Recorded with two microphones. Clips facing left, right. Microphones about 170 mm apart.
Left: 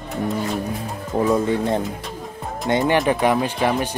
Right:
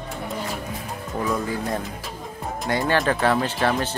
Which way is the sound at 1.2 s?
25° left (ahead or behind).